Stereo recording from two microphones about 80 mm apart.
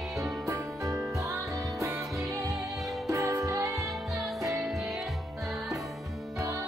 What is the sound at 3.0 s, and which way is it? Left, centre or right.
Music, right.